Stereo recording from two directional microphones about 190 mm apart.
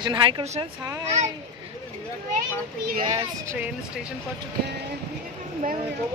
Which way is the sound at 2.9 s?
45° right (ahead or behind).